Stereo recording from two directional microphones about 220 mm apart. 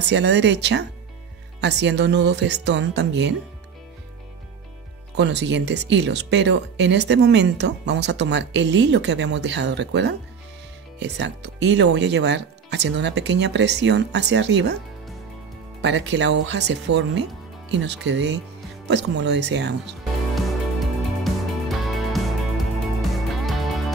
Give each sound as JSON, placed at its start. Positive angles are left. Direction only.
{"t": 0.1, "sound": "speech", "side_deg": -55}
{"t": 5.1, "sound": "speech", "side_deg": -55}
{"t": 15.8, "sound": "speech", "side_deg": -55}
{"t": 20.3, "sound": "music", "side_deg": 0}